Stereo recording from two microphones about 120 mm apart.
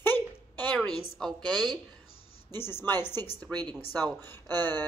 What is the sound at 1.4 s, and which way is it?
Speech, 35° right (ahead or behind).